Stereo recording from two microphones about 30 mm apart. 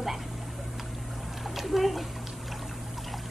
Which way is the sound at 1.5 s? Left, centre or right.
Centre.